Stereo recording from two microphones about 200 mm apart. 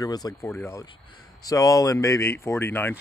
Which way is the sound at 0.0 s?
20° left (ahead or behind).